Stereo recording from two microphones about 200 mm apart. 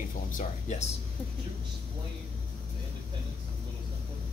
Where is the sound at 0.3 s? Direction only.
40° left (ahead or behind).